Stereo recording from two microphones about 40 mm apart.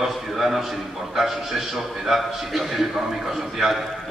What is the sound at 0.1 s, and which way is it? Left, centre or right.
A man's voice, centre.